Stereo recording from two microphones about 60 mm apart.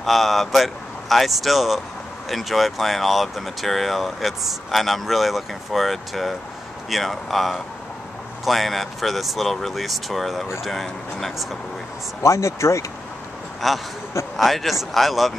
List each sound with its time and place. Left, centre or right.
0.0 s speech: centre
12.2 s speech: left
13.6 s speech: centre